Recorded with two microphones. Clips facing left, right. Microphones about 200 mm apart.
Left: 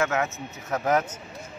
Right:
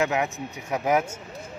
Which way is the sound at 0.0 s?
15° right (ahead or behind).